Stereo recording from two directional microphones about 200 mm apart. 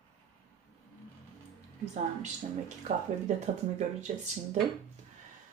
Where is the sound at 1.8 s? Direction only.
35° right (ahead or behind).